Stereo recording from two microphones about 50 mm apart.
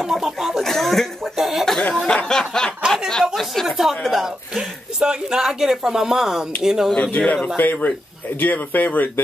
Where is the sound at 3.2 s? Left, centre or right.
Centre.